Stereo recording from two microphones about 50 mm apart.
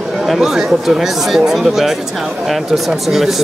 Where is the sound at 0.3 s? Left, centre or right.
Centre.